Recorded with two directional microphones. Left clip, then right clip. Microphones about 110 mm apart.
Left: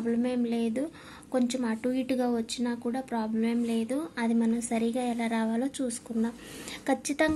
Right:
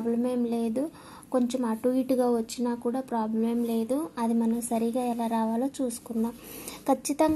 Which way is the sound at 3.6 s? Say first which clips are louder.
Right 2 dB; 35° right (ahead or behind).